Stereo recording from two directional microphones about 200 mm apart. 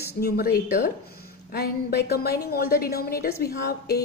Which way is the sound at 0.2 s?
45° left (ahead or behind).